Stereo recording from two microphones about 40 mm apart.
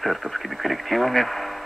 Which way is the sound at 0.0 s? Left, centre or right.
Centre.